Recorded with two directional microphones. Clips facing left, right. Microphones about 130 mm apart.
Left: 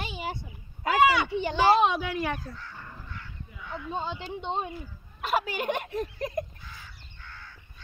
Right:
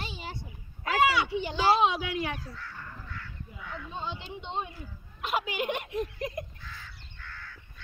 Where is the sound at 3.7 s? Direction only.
40° left (ahead or behind).